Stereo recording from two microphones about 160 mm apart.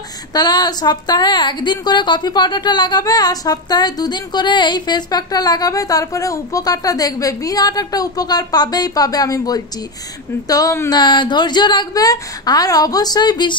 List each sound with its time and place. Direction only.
0.3 s a woman's voice: 25° left (ahead or behind)